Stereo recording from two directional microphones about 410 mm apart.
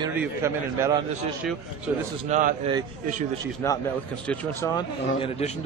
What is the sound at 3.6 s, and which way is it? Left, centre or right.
Speech, centre.